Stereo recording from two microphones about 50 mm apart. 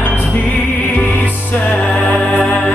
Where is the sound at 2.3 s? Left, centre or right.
Left.